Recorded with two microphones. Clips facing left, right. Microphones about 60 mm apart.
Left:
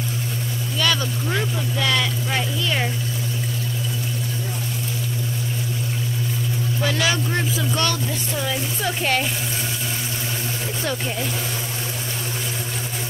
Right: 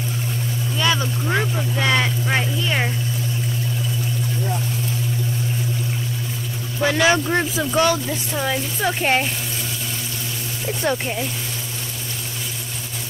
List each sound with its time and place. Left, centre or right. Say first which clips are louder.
0.7 s speech: right 1 dB; right
6.8 s speech: right 6 dB; right
7.7 s speech: right 5 dB; centre
10.8 s speech: right 5 dB; centre